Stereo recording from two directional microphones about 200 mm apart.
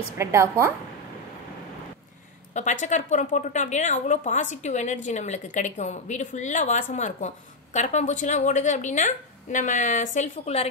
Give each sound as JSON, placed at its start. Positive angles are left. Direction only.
{"t": 0.2, "sound": "a woman's voice", "side_deg": -15}
{"t": 2.5, "sound": "a woman's voice", "side_deg": 35}